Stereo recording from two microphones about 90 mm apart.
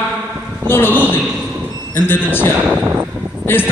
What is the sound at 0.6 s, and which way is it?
A man's voice, 25° left (ahead or behind).